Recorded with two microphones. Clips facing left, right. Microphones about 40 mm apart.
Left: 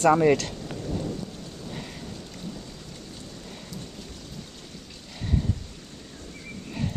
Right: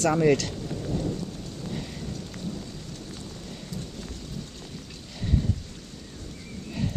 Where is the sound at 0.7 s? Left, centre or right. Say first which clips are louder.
Right 1 dB; centre.